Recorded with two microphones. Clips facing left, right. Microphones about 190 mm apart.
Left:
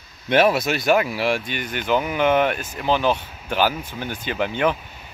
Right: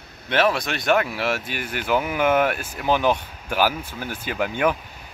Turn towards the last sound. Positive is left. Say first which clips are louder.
# left 1 dB
turn(degrees=-10)  # may be behind; listen again after turning